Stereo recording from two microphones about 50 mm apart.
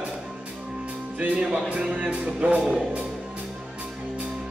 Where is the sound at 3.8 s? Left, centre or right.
Centre.